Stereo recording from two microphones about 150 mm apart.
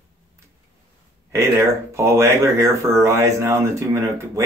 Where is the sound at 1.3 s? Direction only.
20° right (ahead or behind).